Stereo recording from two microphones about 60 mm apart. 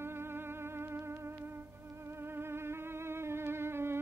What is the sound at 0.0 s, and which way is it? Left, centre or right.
Music, right.